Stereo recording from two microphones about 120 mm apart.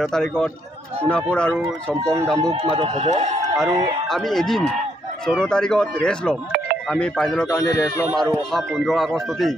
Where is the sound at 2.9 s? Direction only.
70° right (ahead or behind).